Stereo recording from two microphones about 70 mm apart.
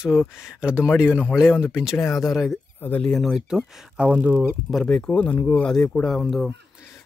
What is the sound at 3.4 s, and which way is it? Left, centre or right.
Speech, centre.